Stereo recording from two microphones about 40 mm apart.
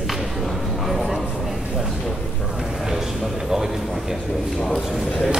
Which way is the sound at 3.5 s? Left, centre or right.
Centre.